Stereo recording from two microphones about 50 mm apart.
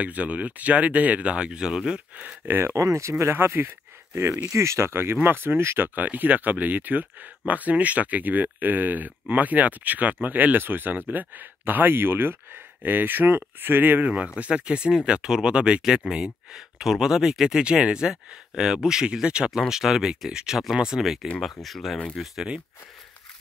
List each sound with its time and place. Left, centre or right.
0.0 s speech: right
2.4 s speech: right
2.7 s speech: right
3.3 s speech: right
4.5 s speech: right
5.8 s speech: right
14.0 s speech: right
15.8 s speech: centre